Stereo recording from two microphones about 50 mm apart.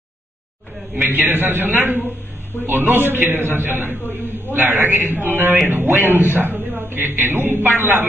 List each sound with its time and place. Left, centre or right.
1.1 s a man's voice: right